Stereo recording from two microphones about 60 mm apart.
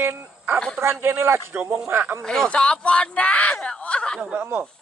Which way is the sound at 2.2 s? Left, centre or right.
Centre.